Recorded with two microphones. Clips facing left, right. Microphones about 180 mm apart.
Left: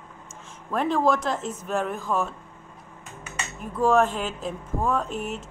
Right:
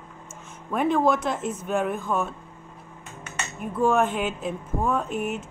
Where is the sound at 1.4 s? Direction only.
35° left (ahead or behind).